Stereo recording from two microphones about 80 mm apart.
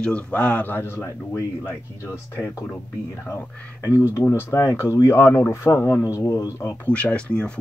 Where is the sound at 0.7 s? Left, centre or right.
Left.